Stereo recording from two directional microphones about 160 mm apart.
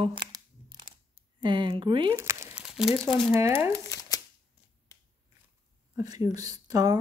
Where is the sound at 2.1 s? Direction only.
15° right (ahead or behind).